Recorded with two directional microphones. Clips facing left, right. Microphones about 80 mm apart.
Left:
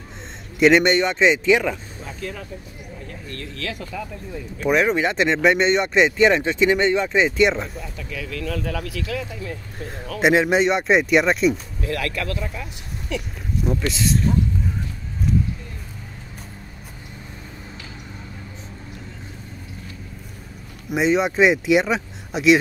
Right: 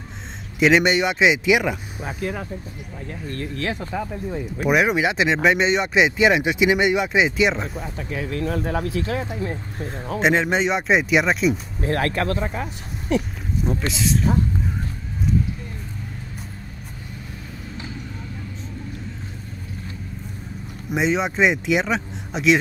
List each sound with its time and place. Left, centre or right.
0.6 s speech: centre
3.1 s speech: right
4.6 s speech: centre
7.8 s speech: right
9.8 s speech: centre
11.8 s speech: right
13.6 s speech: centre
20.9 s speech: centre